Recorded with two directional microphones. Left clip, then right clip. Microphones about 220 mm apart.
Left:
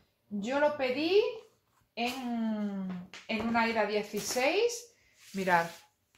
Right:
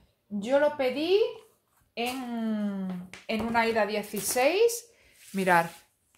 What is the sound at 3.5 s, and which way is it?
Speech, 50° right (ahead or behind).